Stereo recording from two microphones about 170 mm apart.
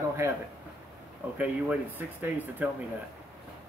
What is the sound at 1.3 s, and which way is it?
Speech, 10° right (ahead or behind).